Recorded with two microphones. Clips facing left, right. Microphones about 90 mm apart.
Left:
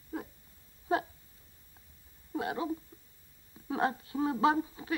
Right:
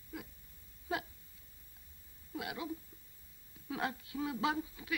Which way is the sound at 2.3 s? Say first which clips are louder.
Left 7 dB; 35° left (ahead or behind).